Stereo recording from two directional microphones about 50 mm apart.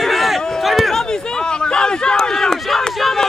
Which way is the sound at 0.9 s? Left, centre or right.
Centre.